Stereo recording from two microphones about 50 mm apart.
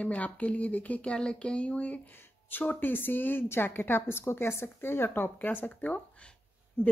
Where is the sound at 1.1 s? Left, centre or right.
Centre; by 3.4 s left.